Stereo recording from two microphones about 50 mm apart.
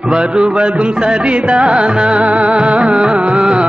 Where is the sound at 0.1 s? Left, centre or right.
Centre.